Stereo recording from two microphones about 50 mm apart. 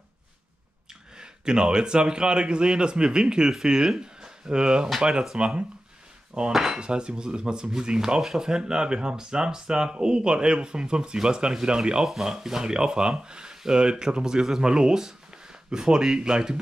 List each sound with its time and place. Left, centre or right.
1.1 s speech: centre